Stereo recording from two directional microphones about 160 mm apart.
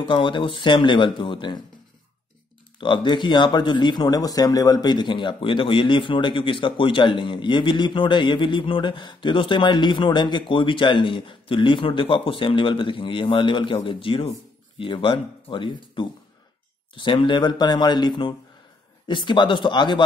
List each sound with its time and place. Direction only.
0.1 s speech: 30° left (ahead or behind)
2.8 s speech: 30° left (ahead or behind)